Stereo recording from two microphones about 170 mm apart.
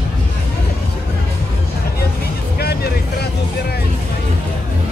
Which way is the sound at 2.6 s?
70° left (ahead or behind).